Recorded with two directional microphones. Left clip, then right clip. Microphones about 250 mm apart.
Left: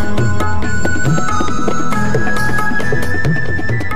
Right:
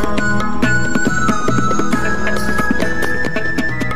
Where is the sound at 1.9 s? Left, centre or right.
Centre.